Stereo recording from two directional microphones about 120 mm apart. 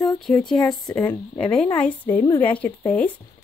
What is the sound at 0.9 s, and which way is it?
Speech, 10° left (ahead or behind).